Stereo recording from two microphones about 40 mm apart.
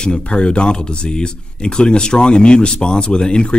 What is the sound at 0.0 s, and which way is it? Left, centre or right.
Speech, left.